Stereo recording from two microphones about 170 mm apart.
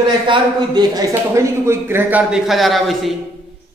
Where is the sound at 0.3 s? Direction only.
25° right (ahead or behind).